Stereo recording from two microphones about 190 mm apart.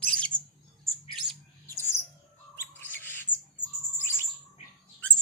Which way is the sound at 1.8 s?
15° left (ahead or behind).